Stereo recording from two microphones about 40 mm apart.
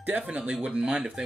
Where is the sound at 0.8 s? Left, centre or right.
Centre.